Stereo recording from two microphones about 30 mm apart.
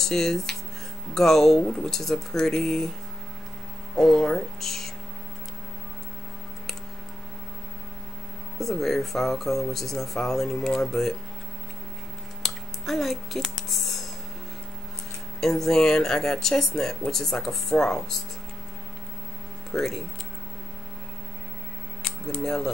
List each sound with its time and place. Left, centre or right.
0.0 s speech: centre
4.0 s speech: left
4.6 s speech: centre
8.5 s speech: centre
12.4 s a sound: centre
15.4 s speech: centre
19.7 s speech: centre
22.3 s speech: centre